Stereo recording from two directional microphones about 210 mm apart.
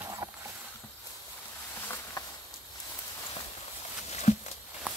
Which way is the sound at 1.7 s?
10° left (ahead or behind).